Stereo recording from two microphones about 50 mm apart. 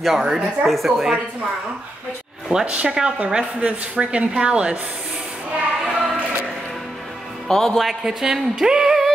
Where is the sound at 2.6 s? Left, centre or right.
Right.